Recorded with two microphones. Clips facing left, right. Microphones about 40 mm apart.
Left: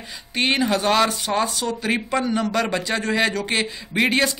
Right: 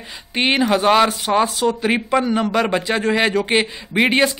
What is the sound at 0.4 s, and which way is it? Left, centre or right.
Speech, centre.